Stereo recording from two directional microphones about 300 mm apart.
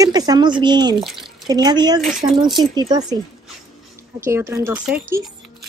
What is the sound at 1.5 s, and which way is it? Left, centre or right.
Speech, centre.